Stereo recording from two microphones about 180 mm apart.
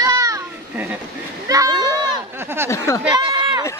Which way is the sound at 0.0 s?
20° right (ahead or behind).